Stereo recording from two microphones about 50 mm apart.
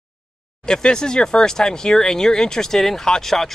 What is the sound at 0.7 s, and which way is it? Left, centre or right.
Speech, centre.